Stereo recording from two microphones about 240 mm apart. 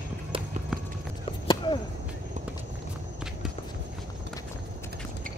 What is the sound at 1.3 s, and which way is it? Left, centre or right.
Chop, centre.